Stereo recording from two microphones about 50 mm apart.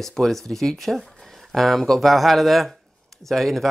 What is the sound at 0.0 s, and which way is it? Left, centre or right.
Speech, centre.